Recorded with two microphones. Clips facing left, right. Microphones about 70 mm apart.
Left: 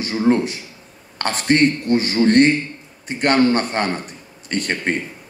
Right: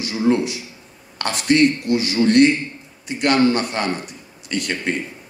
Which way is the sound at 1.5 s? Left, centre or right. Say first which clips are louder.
Even; left.